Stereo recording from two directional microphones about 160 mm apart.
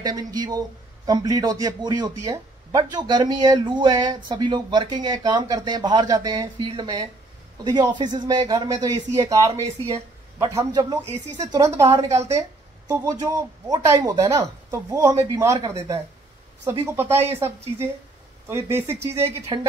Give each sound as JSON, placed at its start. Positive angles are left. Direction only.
{"t": 0.0, "sound": "speech", "side_deg": -25}
{"t": 10.6, "sound": "speech", "side_deg": -25}
{"t": 19.5, "sound": "speech", "side_deg": -25}